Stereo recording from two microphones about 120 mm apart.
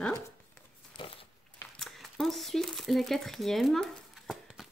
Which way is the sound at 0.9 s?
40° left (ahead or behind).